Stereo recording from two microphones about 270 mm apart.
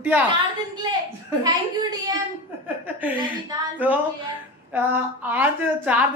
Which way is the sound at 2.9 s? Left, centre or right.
Centre.